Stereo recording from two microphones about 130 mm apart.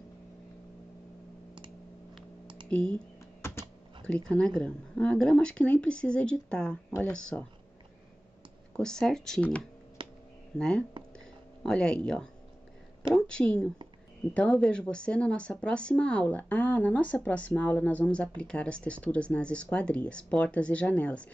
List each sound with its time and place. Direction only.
2.4 s computer keyboard: 35° right (ahead or behind)
2.7 s speech: 5° left (ahead or behind)
4.0 s speech: 5° left (ahead or behind)
8.7 s speech: 5° left (ahead or behind)
10.0 s a sound: 40° right (ahead or behind)
10.6 s speech: 5° left (ahead or behind)
11.1 s a sound: 5° left (ahead or behind)
13.1 s speech: 5° left (ahead or behind)